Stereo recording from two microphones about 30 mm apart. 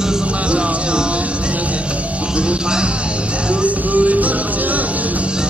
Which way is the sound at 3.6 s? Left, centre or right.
Right.